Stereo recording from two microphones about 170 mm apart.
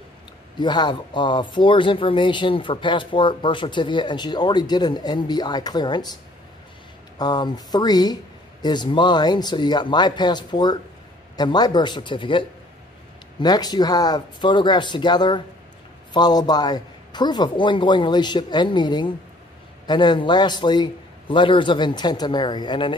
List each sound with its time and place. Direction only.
0.6 s speech: 25° left (ahead or behind)
7.2 s speech: 25° left (ahead or behind)